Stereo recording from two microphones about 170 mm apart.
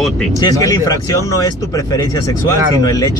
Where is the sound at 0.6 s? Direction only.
20° left (ahead or behind).